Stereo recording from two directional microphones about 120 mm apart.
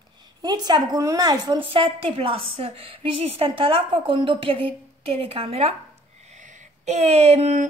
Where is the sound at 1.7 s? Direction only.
50° right (ahead or behind).